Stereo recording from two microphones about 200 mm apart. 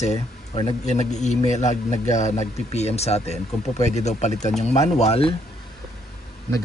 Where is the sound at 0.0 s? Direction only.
30° left (ahead or behind).